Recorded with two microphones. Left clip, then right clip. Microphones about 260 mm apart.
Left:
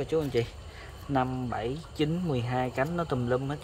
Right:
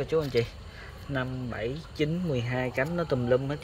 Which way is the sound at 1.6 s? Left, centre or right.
Centre.